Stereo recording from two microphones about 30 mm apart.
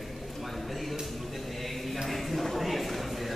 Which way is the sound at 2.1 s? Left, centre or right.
Centre.